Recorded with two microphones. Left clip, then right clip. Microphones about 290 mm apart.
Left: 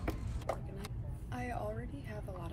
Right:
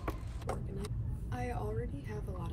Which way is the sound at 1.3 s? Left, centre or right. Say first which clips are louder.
Right 1 dB; centre.